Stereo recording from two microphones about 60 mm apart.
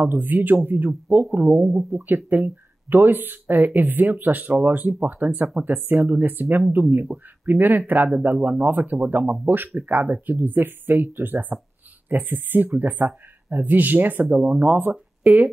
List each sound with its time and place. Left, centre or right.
0.0 s speech: right